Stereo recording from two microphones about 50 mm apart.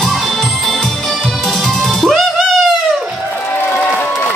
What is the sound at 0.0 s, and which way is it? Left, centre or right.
Music, centre.